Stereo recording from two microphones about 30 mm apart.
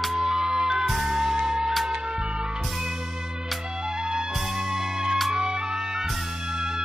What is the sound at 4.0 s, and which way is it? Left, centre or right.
Music, right.